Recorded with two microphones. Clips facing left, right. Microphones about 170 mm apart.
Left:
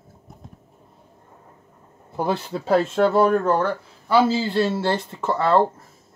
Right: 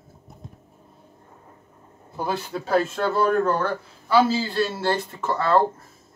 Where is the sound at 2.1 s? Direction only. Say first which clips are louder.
Left 3 dB; 25° left (ahead or behind).